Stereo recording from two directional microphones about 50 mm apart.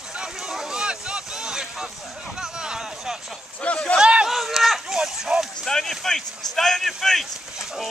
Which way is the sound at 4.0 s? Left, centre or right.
Centre.